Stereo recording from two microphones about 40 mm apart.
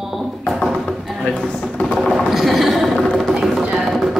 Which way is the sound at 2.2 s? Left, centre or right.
Centre.